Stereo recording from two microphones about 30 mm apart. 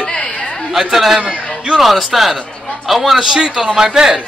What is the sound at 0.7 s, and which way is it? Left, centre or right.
A man's voice, centre.